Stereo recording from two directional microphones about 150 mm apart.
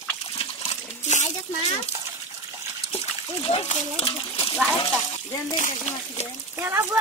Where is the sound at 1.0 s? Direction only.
50° left (ahead or behind).